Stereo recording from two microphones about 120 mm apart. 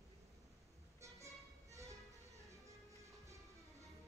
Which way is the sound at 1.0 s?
25° right (ahead or behind).